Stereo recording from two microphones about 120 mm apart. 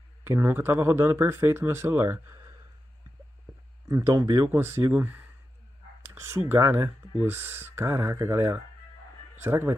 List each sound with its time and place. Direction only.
0.2 s speech: 20° right (ahead or behind)
3.9 s speech: 25° right (ahead or behind)